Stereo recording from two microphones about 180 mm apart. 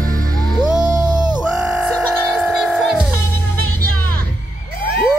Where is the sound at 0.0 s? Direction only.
50° right (ahead or behind).